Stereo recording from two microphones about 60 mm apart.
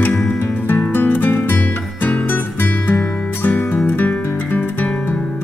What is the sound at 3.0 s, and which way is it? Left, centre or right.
Music, left.